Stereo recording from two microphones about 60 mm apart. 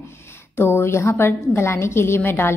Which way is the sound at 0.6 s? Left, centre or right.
Left.